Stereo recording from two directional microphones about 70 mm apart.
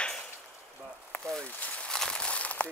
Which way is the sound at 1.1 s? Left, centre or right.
Left.